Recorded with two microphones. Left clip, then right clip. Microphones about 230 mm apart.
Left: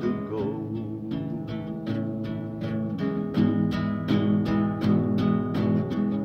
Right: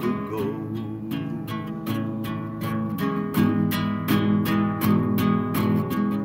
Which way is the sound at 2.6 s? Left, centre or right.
Right.